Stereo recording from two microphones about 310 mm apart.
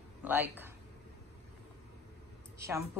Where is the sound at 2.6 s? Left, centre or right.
Centre.